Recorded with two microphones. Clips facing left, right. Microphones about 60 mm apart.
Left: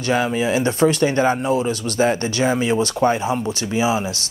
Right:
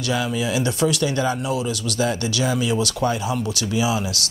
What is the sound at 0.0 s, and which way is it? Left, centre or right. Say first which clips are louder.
Speech: left 4 dB; left.